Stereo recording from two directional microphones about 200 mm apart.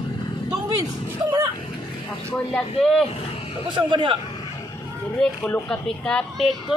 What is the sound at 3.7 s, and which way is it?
Speech, 25° right (ahead or behind).